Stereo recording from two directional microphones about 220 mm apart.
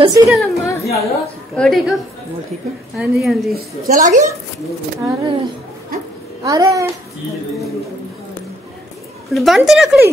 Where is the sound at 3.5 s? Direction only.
35° right (ahead or behind).